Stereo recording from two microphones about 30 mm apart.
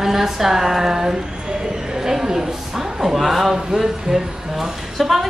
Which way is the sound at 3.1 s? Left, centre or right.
Centre.